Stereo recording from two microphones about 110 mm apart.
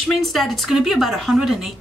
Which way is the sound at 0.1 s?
Centre (ahead or behind).